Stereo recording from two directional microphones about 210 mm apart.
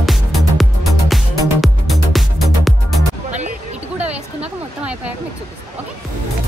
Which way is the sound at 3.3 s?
35° right (ahead or behind).